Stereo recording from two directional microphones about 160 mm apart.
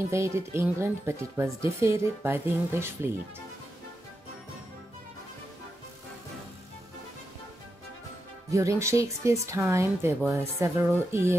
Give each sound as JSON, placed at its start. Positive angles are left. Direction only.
{"t": 0.1, "sound": "speech", "side_deg": -15}
{"t": 8.5, "sound": "speech", "side_deg": -20}